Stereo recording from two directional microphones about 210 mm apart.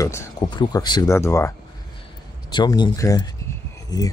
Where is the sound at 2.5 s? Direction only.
20° left (ahead or behind).